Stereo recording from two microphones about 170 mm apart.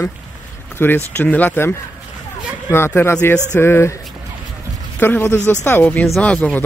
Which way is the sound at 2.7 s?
15° left (ahead or behind).